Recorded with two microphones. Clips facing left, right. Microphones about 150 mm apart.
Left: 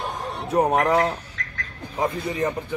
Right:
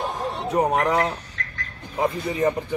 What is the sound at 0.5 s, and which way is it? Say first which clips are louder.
Speech: left 2 dB; 5° left (ahead or behind).